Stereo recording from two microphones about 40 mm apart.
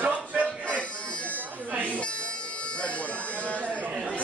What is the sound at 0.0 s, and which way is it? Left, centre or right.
Music, right.